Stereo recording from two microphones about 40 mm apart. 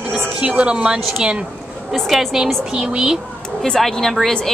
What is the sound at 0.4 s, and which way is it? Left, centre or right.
Speech, right.